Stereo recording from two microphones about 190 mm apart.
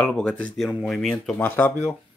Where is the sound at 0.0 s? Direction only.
5° left (ahead or behind).